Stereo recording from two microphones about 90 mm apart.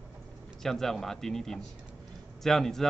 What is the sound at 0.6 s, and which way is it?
Speech, 5° left (ahead or behind).